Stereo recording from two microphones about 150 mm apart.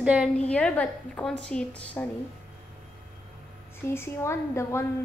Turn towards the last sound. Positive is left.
turn(degrees=20)  # may be behind; listen again after turning